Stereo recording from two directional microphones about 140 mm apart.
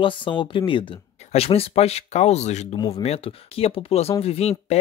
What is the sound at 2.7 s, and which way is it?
Speech, 25° left (ahead or behind).